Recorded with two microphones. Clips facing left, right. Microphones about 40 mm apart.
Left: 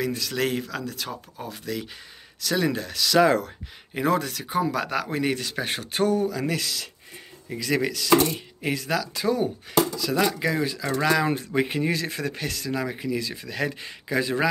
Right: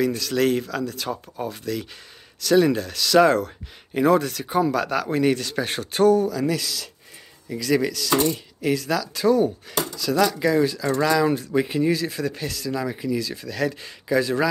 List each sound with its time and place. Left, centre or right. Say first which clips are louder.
0.0 s speech: right 5 dB; centre
6.0 s speech: right 6 dB; left
7.4 s speech: right 3 dB; left
9.2 s speech: right 5 dB; centre